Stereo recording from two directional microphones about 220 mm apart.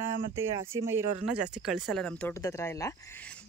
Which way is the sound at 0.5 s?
10° right (ahead or behind).